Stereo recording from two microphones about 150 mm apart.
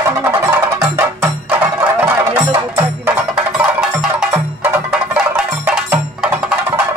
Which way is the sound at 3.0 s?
5° right (ahead or behind).